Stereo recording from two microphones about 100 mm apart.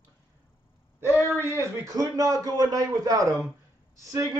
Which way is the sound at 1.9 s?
35° right (ahead or behind).